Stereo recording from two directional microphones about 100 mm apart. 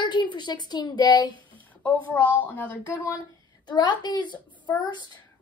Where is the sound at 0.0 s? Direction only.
50° left (ahead or behind).